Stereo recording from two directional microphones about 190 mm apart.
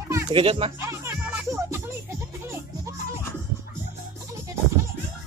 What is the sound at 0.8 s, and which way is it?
Music, 15° right (ahead or behind).